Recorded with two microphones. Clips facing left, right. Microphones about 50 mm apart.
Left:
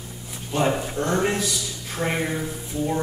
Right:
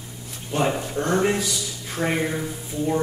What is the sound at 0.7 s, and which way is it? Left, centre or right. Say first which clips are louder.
Speech: left 1 dB; centre.